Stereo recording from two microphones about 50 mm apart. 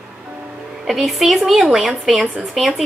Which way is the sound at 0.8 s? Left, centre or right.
Centre.